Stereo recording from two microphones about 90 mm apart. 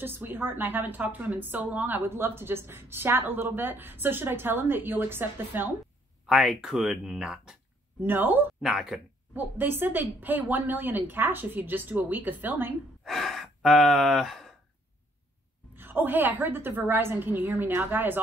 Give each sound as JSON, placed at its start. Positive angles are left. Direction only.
{"t": 0.0, "sound": "a woman's voice", "side_deg": -25}
{"t": 6.2, "sound": "speech", "side_deg": 0}
{"t": 8.0, "sound": "a woman's voice", "side_deg": -20}
{"t": 8.6, "sound": "speech", "side_deg": -5}
{"t": 9.3, "sound": "a woman's voice", "side_deg": -20}
{"t": 13.0, "sound": "speech", "side_deg": 0}
{"t": 15.7, "sound": "a woman's voice", "side_deg": -25}